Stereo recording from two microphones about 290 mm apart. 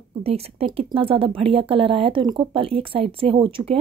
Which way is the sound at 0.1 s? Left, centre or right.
Right.